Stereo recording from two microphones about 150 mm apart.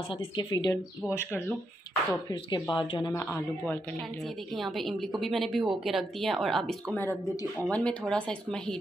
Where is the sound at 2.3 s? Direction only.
30° left (ahead or behind).